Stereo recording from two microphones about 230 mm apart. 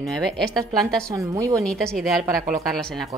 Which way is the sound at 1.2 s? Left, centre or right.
Centre.